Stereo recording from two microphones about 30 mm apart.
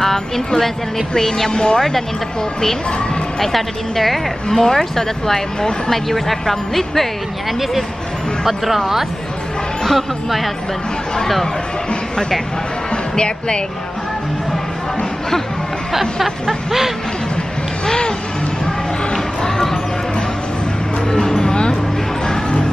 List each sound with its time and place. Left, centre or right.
0.0 s speech: centre
1.5 s speech: left
1.8 s speech: centre
3.3 s a woman's voice: centre
4.5 s speech: centre
8.5 s a woman's voice: centre
12.9 s speech: left
17.8 s a sound: left
19.5 s a sound: centre
21.1 s music: left